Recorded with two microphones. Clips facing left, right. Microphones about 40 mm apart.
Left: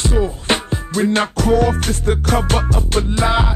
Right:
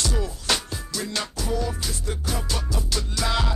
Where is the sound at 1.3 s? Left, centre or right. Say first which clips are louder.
Left 13 dB; left.